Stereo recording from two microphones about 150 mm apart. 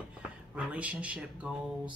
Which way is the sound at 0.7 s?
10° right (ahead or behind).